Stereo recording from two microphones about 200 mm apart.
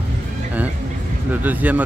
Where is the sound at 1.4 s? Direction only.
10° right (ahead or behind).